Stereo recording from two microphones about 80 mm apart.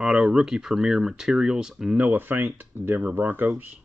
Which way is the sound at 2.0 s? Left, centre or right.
Right.